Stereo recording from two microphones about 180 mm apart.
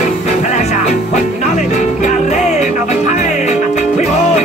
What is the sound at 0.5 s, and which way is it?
Music, 40° left (ahead or behind).